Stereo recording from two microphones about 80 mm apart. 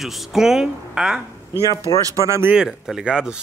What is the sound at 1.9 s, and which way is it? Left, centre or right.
Speech, left.